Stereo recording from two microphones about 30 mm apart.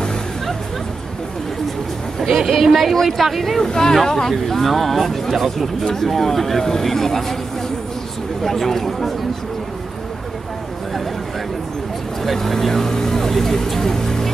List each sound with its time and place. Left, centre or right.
2.4 s speech: centre
3.5 s speech: centre
8.5 s speech: centre
12.2 s speech: centre